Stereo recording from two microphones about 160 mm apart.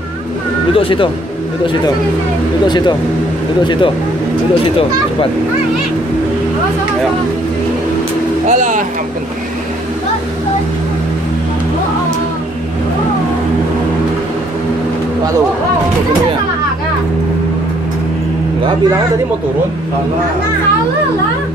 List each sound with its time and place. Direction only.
0.7 s speech: 35° left (ahead or behind)
3.6 s speech: 30° left (ahead or behind)
8.5 s speech: 50° right (ahead or behind)